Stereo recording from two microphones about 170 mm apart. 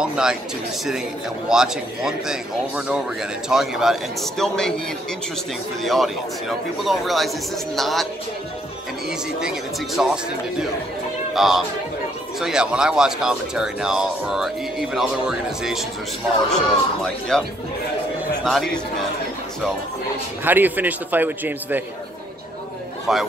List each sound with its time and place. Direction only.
0.0 s speech: 5° right (ahead or behind)
1.5 s speech: 5° right (ahead or behind)
5.9 s speech: centre (ahead or behind)
9.4 s speech: 5° right (ahead or behind)
20.4 s a man's voice: 10° right (ahead or behind)
23.1 s speech: centre (ahead or behind)